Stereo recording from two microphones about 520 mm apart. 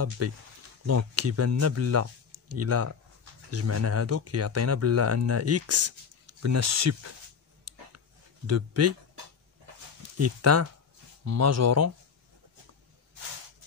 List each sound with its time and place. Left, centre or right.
0.2 s speech: right
7.7 s a sound: right
8.5 s speech: right
10.1 s speech: right